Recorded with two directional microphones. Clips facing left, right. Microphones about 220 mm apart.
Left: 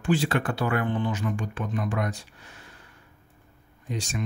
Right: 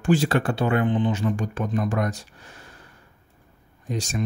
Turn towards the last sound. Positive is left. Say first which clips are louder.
# right 4 dB
turn(degrees=-40)  # may be behind; listen again after turning